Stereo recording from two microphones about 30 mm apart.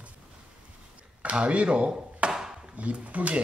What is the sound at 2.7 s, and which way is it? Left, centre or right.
Speech, right.